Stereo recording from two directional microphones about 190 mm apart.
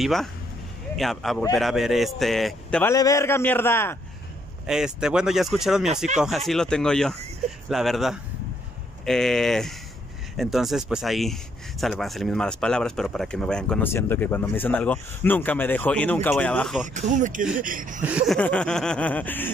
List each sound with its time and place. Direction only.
0.0 s speech: centre (ahead or behind)
2.9 s speech: 15° left (ahead or behind)
4.6 s speech: 5° right (ahead or behind)
16.8 s speech: 40° right (ahead or behind)
18.0 s speech: 5° right (ahead or behind)